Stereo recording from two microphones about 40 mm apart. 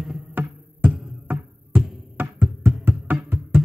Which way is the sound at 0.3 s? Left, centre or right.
Right.